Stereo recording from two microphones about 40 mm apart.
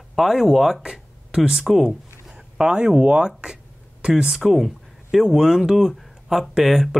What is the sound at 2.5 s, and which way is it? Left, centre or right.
Speech, right.